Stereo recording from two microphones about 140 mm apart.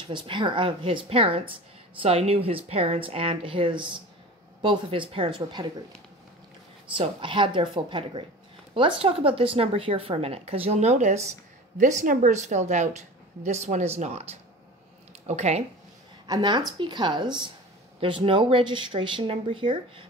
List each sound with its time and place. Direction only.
0.0 s a woman's voice: 35° right (ahead or behind)
6.9 s a woman's voice: 35° right (ahead or behind); by 11.2 s 55° right (ahead or behind)
11.8 s a woman's voice: 65° right (ahead or behind)
15.2 s a woman's voice: 50° right (ahead or behind)
16.3 s speech: 30° right (ahead or behind)